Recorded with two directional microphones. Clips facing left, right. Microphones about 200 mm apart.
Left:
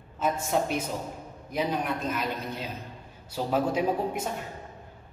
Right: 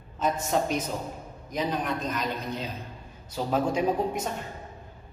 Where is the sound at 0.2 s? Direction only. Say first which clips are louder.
Right 1 dB; 10° left (ahead or behind).